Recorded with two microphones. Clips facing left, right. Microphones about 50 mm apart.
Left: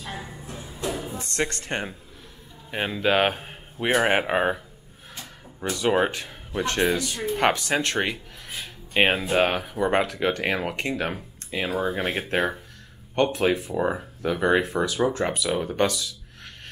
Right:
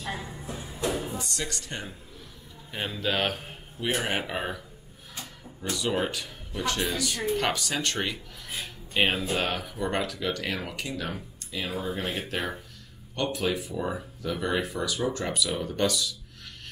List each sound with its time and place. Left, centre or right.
1.1 s speech: left
2.7 s speech: left
3.8 s speech: left
6.9 s speech: centre